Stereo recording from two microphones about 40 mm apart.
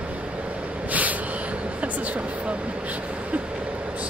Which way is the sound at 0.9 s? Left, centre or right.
Right.